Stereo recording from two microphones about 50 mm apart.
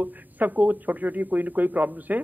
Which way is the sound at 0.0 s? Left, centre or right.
Right.